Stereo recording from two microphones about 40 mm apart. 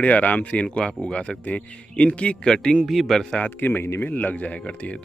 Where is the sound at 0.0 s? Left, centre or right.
Left.